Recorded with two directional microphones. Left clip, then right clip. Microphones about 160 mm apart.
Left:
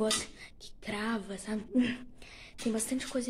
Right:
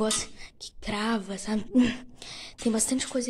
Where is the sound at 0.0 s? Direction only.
10° right (ahead or behind).